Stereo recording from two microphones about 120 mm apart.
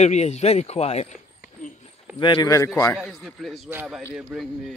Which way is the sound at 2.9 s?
Centre (ahead or behind).